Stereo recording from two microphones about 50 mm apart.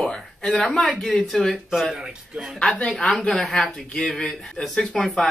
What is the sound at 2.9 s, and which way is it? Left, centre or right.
Speech, centre.